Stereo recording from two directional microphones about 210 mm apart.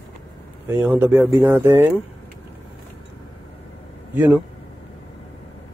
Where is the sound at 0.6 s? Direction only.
10° right (ahead or behind).